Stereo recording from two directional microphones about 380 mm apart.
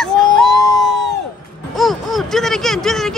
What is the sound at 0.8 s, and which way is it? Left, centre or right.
Crowd, right.